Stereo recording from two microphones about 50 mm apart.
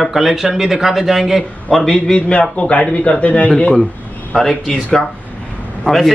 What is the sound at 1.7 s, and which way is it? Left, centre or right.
A man's voice, centre.